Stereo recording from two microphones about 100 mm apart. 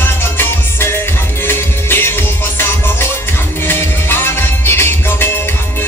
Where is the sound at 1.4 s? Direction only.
20° left (ahead or behind).